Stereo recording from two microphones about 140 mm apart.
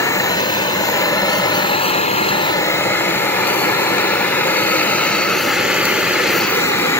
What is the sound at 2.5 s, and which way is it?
Vehicle, 20° left (ahead or behind).